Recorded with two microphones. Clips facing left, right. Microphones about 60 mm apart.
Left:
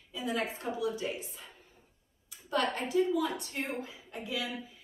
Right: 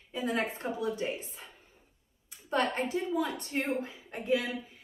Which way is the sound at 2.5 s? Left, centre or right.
Right.